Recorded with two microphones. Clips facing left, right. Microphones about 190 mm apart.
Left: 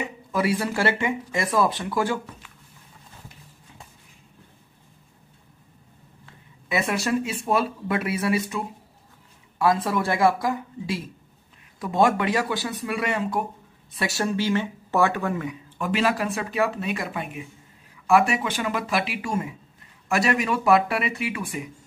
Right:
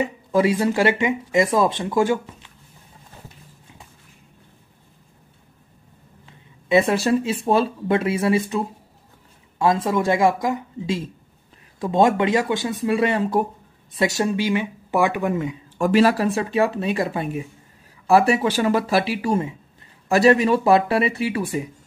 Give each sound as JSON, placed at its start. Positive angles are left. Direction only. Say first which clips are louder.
{"t": 0.3, "sound": "speech", "louder": "right 5 dB", "side_deg": -20}
{"t": 6.2, "sound": "a sound", "louder": "right 8 dB", "side_deg": -25}
{"t": 7.4, "sound": "speech", "louder": "right 5 dB", "side_deg": -30}
{"t": 13.9, "sound": "speech", "louder": "right 5 dB", "side_deg": -20}
{"t": 15.8, "sound": "speech", "louder": "right 7 dB", "side_deg": -40}